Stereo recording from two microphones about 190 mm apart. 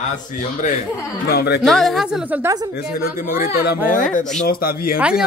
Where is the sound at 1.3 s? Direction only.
60° left (ahead or behind).